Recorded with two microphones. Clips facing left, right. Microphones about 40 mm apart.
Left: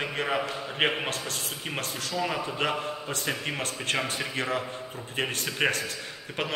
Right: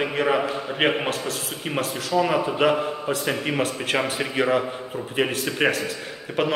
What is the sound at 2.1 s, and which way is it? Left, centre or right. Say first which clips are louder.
A man's voice: right 9 dB; centre.